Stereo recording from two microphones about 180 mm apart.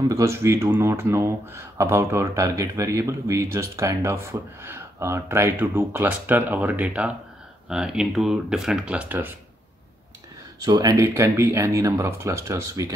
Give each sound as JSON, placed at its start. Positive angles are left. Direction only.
{"t": 0.1, "sound": "speech", "side_deg": -15}
{"t": 10.6, "sound": "speech", "side_deg": -20}